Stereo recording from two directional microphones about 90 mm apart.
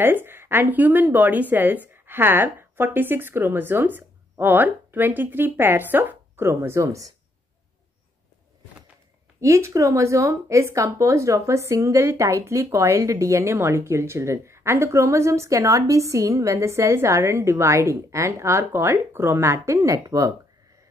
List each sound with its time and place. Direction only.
0.0 s a woman's voice: 25° right (ahead or behind)
9.4 s speech: 35° right (ahead or behind)